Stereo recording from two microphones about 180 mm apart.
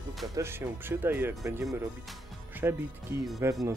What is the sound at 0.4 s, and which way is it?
Speech, 15° right (ahead or behind).